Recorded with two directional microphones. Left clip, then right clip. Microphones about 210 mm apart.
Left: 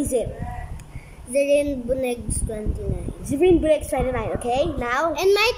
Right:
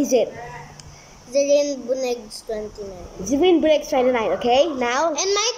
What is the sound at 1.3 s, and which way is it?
A woman's voice, 15° left (ahead or behind).